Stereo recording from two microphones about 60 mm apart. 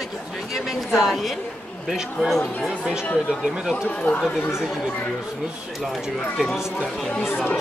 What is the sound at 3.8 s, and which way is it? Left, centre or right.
Speech, left.